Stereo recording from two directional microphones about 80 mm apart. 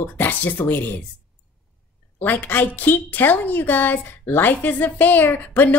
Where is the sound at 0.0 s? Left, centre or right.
Left.